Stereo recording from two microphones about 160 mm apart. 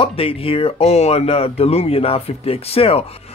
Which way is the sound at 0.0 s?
35° left (ahead or behind).